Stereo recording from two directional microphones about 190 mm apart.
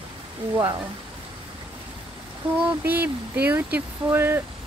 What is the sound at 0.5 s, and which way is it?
Speech, 20° right (ahead or behind).